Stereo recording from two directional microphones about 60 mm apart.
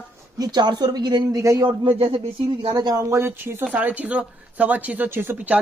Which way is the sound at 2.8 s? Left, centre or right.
Right.